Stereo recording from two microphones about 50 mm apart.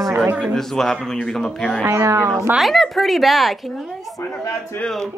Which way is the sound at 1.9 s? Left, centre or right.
Right.